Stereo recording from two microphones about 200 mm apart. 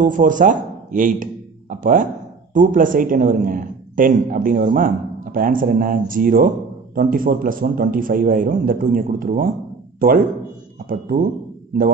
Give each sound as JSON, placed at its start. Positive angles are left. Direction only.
{"t": 0.0, "sound": "a man's voice", "side_deg": -40}